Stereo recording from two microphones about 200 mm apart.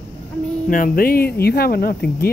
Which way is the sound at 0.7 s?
45° left (ahead or behind).